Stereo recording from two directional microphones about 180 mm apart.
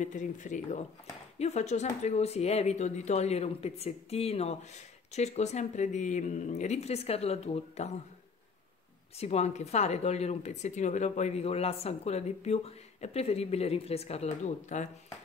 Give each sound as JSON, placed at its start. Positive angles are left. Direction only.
{"t": 0.0, "sound": "speech", "side_deg": 45}
{"t": 9.2, "sound": "speech", "side_deg": 35}